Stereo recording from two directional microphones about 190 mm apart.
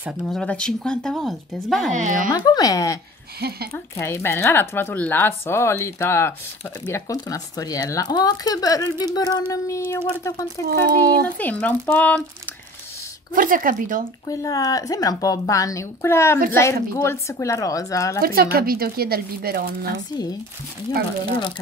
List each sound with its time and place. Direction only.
0.0 s speech: centre (ahead or behind)
2.0 s speech: 40° right (ahead or behind)
2.3 s speech: 20° left (ahead or behind)
3.3 s speech: 55° right (ahead or behind)
3.7 s speech: 15° left (ahead or behind)
10.7 s speech: 55° right (ahead or behind)
11.2 s speech: 5° left (ahead or behind)
13.3 s speech: 45° right (ahead or behind)
14.3 s speech: 20° left (ahead or behind)
18.2 s speech: 50° right (ahead or behind)